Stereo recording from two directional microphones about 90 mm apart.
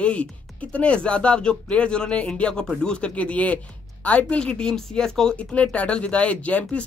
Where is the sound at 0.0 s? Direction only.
15° left (ahead or behind).